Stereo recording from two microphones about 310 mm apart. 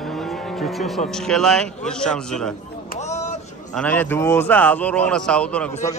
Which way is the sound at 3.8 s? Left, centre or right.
Centre.